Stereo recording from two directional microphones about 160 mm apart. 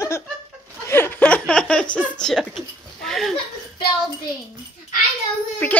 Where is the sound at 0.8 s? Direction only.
15° left (ahead or behind).